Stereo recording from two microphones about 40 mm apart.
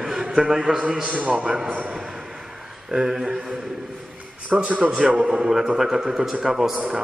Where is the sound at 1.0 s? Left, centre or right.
Right.